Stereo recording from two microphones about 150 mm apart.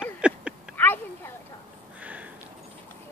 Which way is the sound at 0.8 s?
10° left (ahead or behind).